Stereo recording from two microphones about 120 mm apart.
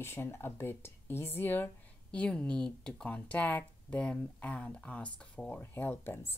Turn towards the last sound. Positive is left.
turn(degrees=15)  # may be behind; listen again after turning